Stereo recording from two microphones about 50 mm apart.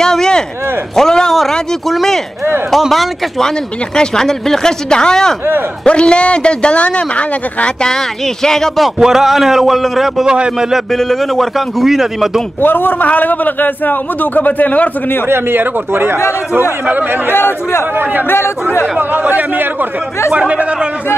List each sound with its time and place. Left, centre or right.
0.0 s a sound: centre
1.9 s a man's voice: centre; by 7.9 s left
7.9 s speech: centre
8.8 s speech: centre
10.2 s speech: centre
10.9 s speech: centre
11.8 s speech: centre
12.6 s a man's voice: left
15.2 s a man's voice: right
17.3 s a man's voice: left
18.9 s speech: right